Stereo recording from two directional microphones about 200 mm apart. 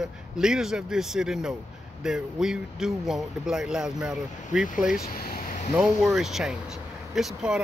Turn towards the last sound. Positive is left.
turn(degrees=0)  # may be behind; listen again after turning